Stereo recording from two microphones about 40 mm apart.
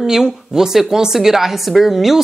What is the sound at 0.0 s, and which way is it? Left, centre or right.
A woman's voice, centre.